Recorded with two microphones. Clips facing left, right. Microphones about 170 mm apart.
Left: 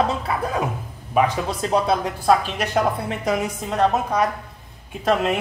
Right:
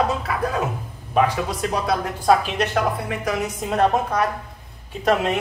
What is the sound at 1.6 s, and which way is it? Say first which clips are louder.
Speech: left 4 dB; 30° left (ahead or behind).